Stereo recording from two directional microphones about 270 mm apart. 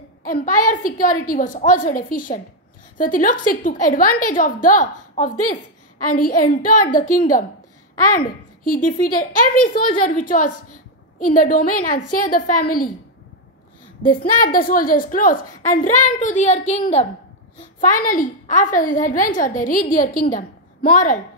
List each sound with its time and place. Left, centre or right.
0.2 s a woman's voice: left
8.6 s a woman's voice: left
14.0 s a woman's voice: left